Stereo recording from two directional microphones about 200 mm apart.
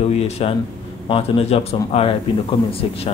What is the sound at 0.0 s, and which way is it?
Speech, 30° left (ahead or behind).